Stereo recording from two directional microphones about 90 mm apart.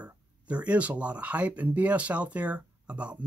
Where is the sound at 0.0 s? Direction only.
15° right (ahead or behind).